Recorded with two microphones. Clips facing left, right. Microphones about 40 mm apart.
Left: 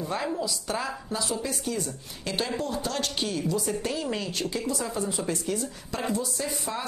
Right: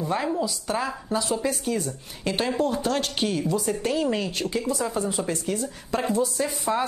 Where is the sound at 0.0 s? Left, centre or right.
Centre.